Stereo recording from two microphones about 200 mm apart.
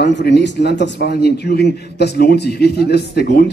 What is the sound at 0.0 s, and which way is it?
Speech, 60° left (ahead or behind).